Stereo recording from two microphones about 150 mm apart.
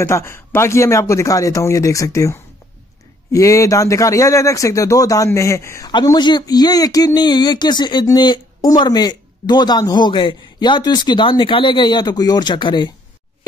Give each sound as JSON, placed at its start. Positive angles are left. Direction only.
{"t": 0.0, "sound": "speech", "side_deg": 20}